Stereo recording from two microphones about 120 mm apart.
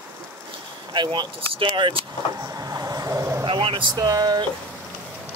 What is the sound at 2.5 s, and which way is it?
Vehicle, 30° right (ahead or behind).